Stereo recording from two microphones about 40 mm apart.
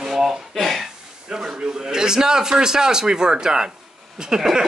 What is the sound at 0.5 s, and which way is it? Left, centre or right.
Speech, centre.